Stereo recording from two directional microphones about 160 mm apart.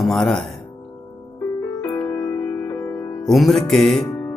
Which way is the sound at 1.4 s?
15° left (ahead or behind).